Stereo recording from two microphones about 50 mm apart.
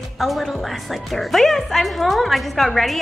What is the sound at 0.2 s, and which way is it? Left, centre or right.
A woman's voice, centre.